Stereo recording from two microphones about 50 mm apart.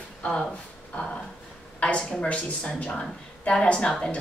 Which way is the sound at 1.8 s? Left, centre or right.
Left.